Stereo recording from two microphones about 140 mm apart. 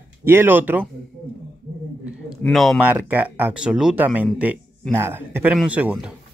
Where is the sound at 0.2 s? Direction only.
15° right (ahead or behind).